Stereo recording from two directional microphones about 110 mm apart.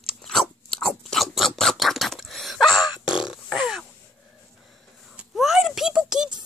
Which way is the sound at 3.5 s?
5° right (ahead or behind).